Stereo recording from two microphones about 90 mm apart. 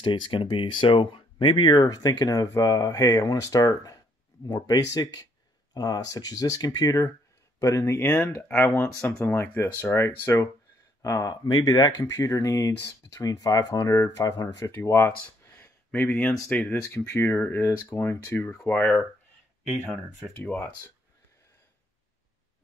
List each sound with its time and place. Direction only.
0.0 s speech: 70° left (ahead or behind); by 11.3 s 35° left (ahead or behind)
11.4 s speech: 45° left (ahead or behind)
12.1 s speech: 35° left (ahead or behind)
14.7 s speech: 30° left (ahead or behind)
15.4 s a sound: 25° left (ahead or behind)
16.4 s speech: 20° left (ahead or behind)
16.8 s speech: 30° left (ahead or behind)
18.5 s speech: 10° left (ahead or behind)
19.9 s speech: 5° right (ahead or behind)
20.4 s speech: 15° left (ahead or behind)